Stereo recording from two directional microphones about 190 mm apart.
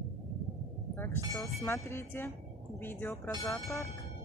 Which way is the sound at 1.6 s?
15° left (ahead or behind).